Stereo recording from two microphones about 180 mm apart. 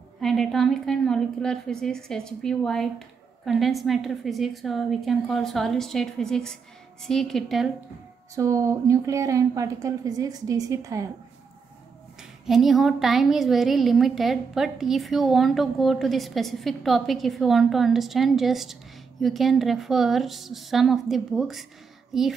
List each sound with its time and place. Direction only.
0.2 s a woman's voice: centre (ahead or behind)
8.4 s a woman's voice: 20° right (ahead or behind)
12.2 s a woman's voice: centre (ahead or behind)